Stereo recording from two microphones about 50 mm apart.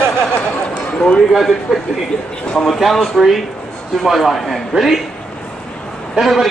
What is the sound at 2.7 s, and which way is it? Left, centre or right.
A man's voice, centre.